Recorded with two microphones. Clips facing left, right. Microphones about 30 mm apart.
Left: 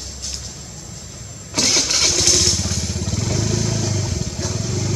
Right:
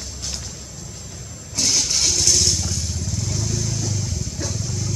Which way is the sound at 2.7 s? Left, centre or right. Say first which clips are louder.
Left 3 dB; left.